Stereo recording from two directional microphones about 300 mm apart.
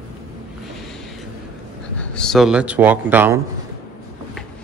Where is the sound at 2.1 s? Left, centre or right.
Centre.